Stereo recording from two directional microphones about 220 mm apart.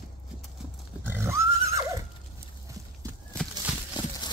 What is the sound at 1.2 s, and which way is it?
Neigh, 10° right (ahead or behind).